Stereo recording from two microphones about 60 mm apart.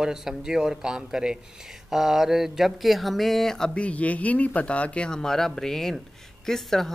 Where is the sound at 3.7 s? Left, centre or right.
Left.